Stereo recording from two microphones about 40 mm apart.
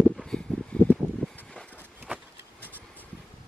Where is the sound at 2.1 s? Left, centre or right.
Right.